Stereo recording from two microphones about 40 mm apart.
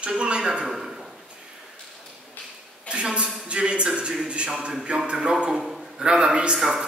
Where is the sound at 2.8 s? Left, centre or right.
Right.